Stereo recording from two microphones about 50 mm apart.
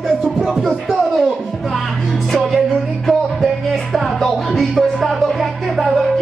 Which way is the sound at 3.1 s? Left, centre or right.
Centre.